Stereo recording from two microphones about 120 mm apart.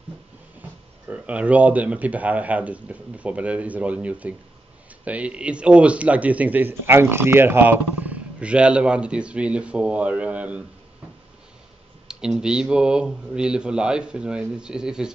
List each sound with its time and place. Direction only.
0.6 s speech: 10° right (ahead or behind)
12.1 s speech: 5° right (ahead or behind)